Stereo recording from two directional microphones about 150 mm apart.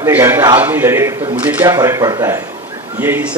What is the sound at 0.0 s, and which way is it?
A man's voice, 15° right (ahead or behind).